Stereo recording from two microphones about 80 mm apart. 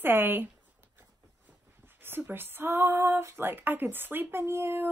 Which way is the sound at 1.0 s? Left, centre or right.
Right.